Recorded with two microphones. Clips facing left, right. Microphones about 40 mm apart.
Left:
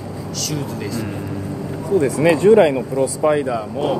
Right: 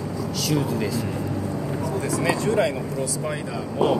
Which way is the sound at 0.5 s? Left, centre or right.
Centre.